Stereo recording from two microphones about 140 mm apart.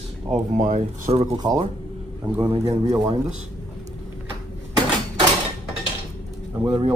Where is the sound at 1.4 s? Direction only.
30° right (ahead or behind).